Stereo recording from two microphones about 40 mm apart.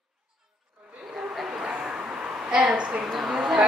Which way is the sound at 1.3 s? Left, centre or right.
Centre.